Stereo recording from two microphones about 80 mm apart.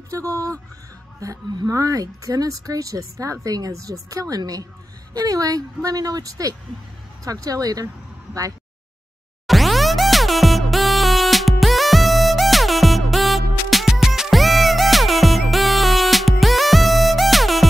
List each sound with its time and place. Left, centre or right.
0.1 s speech: right
9.5 s music: centre